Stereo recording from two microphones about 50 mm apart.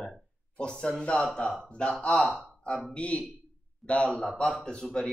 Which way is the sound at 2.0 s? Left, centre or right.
Centre.